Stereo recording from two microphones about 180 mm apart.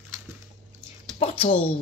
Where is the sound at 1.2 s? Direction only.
30° left (ahead or behind).